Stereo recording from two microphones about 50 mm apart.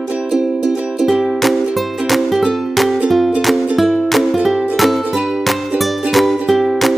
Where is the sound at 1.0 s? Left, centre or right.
Centre.